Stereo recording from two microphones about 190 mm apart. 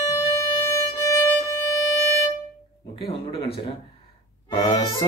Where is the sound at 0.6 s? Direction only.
15° left (ahead or behind).